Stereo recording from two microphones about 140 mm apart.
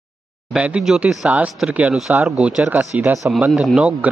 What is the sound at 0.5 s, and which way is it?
Speech, 5° right (ahead or behind).